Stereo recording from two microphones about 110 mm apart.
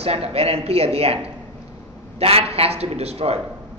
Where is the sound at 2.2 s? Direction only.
65° right (ahead or behind).